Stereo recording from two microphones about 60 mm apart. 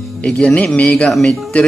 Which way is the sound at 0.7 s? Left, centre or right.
Left.